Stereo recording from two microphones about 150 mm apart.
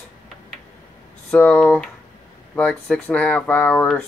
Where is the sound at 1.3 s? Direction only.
10° left (ahead or behind).